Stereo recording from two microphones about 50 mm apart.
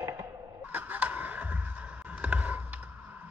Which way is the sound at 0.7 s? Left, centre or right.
Right.